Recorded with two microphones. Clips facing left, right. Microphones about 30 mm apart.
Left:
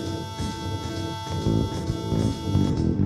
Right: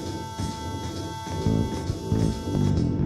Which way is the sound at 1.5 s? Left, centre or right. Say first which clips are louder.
Left 1 dB; left.